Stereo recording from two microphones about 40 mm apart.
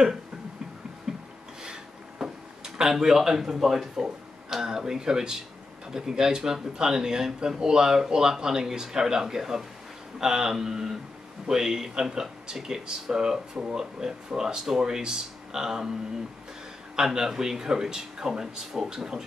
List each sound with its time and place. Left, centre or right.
1.6 s a sound: centre
5.9 s speech: centre
16.9 s speech: centre